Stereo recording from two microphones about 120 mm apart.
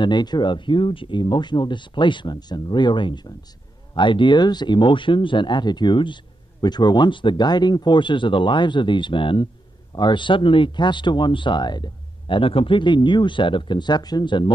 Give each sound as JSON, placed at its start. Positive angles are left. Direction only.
{"t": 0.0, "sound": "speech", "side_deg": 35}